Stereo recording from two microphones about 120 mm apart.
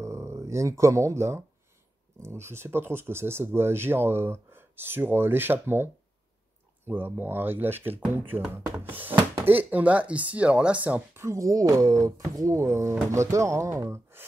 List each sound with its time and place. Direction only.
0.0 s speech: 25° right (ahead or behind)
6.9 s speech: 15° right (ahead or behind)
11.2 s speech: 30° right (ahead or behind)